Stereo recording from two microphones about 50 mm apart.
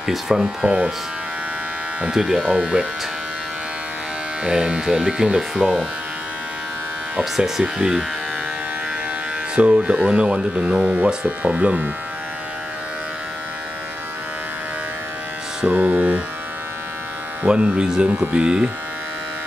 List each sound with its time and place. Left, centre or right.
0.0 s speech: centre
0.7 s speech: right
2.0 s speech: centre
2.4 s speech: right
4.5 s speech: centre
7.3 s speech: centre
9.6 s speech: right
15.6 s hum: right
17.7 s speech: centre